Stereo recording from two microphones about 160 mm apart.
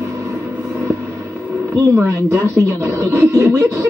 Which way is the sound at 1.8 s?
20° right (ahead or behind).